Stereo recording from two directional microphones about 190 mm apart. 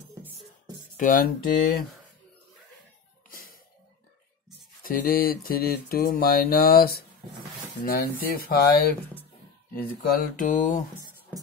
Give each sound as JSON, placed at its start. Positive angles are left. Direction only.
{"t": 0.9, "sound": "mantra", "side_deg": 45}
{"t": 3.3, "sound": "music", "side_deg": 50}
{"t": 4.8, "sound": "mantra", "side_deg": 50}